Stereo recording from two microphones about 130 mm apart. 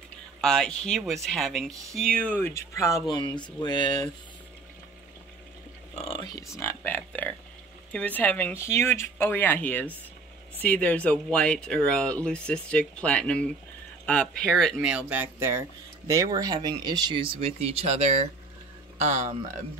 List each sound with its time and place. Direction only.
0.4 s speech: 5° left (ahead or behind); by 4.1 s 35° left (ahead or behind)
5.9 s a sound: 45° left (ahead or behind)
6.5 s speech: 20° left (ahead or behind)
14.8 s speech: 10° right (ahead or behind); by 19.3 s 65° right (ahead or behind)